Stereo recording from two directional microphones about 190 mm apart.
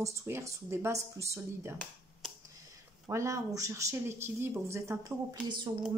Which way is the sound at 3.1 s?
15° right (ahead or behind).